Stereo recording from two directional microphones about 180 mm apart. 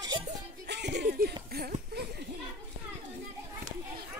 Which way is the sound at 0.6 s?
70° right (ahead or behind).